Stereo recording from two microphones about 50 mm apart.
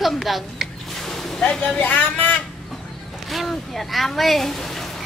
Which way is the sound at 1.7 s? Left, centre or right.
Left.